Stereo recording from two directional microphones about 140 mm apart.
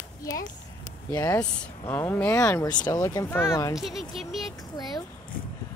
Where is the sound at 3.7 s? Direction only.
Centre (ahead or behind).